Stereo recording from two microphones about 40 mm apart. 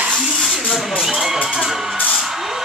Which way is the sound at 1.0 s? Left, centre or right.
Centre.